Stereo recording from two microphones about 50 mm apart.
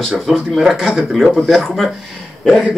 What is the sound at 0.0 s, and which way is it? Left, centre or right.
Speech, centre.